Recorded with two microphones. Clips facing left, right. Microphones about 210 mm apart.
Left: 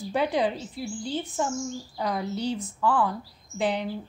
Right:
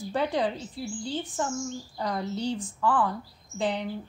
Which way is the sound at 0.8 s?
20° left (ahead or behind).